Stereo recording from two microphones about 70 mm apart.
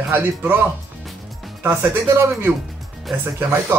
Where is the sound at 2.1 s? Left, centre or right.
Right.